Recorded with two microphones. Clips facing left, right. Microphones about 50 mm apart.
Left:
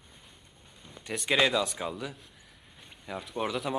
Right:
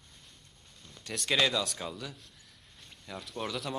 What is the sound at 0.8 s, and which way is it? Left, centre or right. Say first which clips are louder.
A man's voice: left 3 dB; centre.